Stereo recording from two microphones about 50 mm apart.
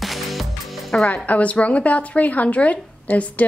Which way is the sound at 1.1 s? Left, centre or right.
Left.